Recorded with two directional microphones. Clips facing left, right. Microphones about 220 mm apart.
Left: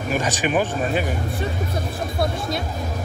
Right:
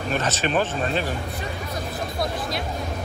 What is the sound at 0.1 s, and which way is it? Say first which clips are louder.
Speech: left 2 dB; 15° left (ahead or behind).